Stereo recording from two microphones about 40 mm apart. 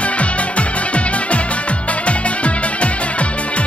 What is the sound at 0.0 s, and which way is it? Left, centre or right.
Music, left.